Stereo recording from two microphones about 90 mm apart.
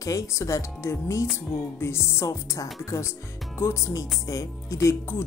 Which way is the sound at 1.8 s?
30° left (ahead or behind).